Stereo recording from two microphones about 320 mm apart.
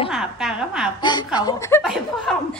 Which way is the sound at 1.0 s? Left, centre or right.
Centre.